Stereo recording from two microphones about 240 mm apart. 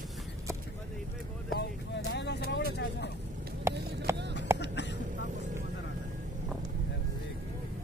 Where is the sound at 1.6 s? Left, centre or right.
Left.